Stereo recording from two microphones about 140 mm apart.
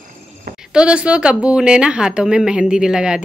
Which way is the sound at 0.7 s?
5° right (ahead or behind).